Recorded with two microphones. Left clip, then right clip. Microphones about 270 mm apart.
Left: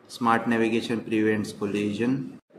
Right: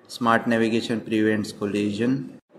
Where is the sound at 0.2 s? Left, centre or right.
Centre.